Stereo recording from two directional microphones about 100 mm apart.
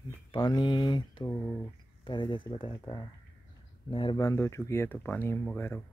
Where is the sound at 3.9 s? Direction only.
55° left (ahead or behind).